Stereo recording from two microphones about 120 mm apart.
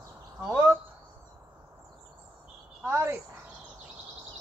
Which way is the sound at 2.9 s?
20° right (ahead or behind).